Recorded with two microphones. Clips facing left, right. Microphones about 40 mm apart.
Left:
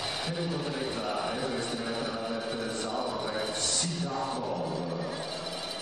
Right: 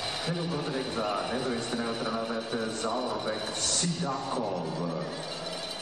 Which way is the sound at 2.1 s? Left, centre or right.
Centre.